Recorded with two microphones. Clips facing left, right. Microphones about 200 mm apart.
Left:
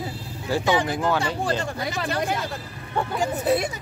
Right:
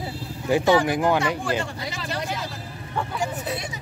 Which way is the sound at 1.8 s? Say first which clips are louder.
Left 4 dB; 55° left (ahead or behind).